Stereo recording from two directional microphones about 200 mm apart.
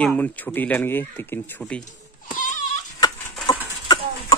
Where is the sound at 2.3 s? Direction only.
40° left (ahead or behind).